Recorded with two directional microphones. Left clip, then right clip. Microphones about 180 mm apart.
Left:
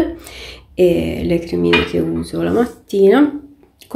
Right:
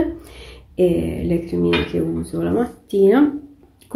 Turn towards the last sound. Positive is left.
turn(degrees=10)  # may be behind; listen again after turning